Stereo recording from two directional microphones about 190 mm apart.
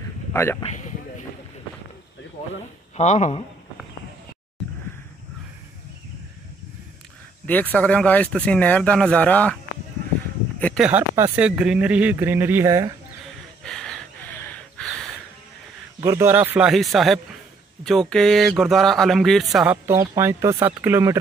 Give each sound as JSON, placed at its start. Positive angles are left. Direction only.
{"t": 0.3, "sound": "speech", "side_deg": 10}
{"t": 0.6, "sound": "a sound", "side_deg": 35}
{"t": 3.0, "sound": "a man's voice", "side_deg": 35}
{"t": 7.4, "sound": "speech", "side_deg": 10}
{"t": 10.6, "sound": "speech", "side_deg": 5}
{"t": 10.9, "sound": "speech", "side_deg": -10}
{"t": 13.7, "sound": "gasp", "side_deg": 5}
{"t": 16.0, "sound": "speech", "side_deg": -15}
{"t": 19.9, "sound": "speech", "side_deg": -15}